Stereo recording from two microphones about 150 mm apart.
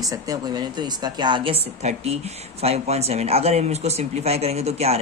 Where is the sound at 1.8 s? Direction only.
45° right (ahead or behind).